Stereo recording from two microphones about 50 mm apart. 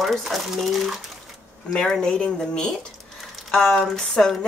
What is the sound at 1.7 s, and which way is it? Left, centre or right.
Speech, centre.